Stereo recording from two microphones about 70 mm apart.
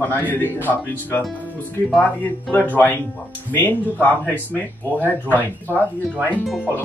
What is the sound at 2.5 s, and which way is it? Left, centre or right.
Speech, left.